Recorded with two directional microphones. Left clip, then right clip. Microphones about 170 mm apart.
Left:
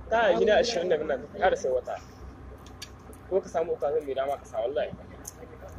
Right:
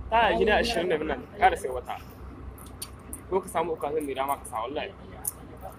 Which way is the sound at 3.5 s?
35° right (ahead or behind).